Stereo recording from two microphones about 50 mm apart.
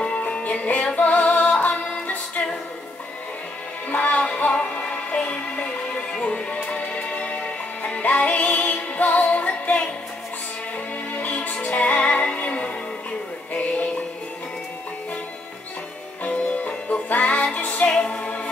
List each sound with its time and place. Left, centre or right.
0.0 s music: left
3.9 s music: left
11.1 s music: left
16.3 s music: left
17.8 s music: centre